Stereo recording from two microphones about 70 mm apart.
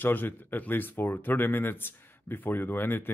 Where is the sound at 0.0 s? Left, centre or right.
Left.